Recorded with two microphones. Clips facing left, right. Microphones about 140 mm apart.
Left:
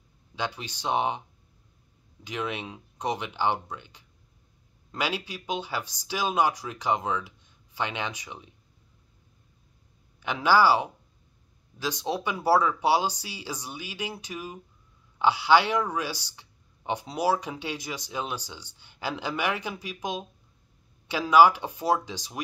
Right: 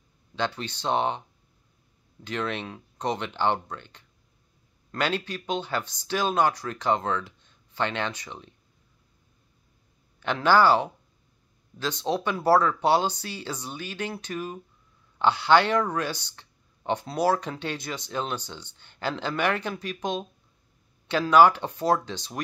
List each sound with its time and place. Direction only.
0.4 s speech: 10° left (ahead or behind)
2.2 s speech: 10° left (ahead or behind)
10.2 s speech: 10° left (ahead or behind)